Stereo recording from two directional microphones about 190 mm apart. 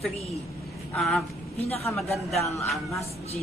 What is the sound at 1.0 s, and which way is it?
Speech, centre (ahead or behind).